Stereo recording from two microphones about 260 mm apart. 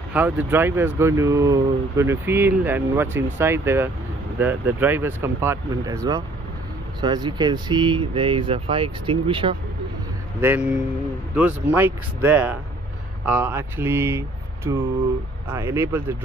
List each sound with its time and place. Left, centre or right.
0.1 s speech: centre
7.0 s speech: centre
10.4 s speech: centre